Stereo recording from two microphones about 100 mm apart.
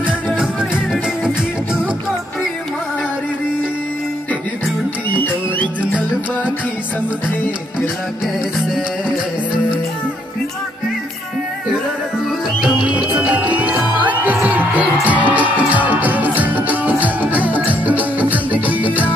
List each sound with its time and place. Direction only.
5.1 s music: 20° left (ahead or behind)
12.6 s music: 10° right (ahead or behind)